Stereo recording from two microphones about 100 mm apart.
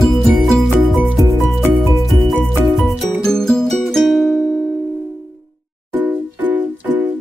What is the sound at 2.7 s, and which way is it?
Music, 5° left (ahead or behind).